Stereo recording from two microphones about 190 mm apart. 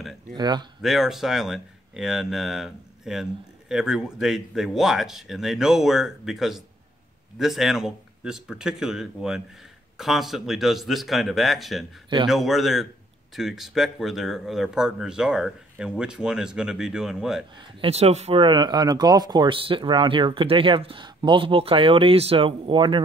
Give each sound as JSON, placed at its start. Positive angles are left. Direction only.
{"t": 0.0, "sound": "a sound", "side_deg": 0}
{"t": 0.4, "sound": "speech", "side_deg": -20}
{"t": 0.8, "sound": "speech", "side_deg": 0}
{"t": 17.6, "sound": "speech", "side_deg": -30}